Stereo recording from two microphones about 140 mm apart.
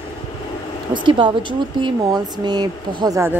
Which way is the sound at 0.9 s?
35° right (ahead or behind).